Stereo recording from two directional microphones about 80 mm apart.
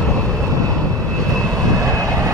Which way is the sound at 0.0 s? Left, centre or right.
Centre.